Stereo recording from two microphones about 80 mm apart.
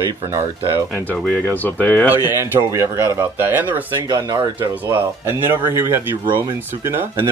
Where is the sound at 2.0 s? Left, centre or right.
Right.